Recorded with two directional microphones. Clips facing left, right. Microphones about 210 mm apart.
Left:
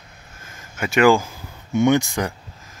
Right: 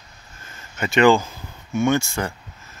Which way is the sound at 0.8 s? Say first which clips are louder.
Even; 10° left (ahead or behind).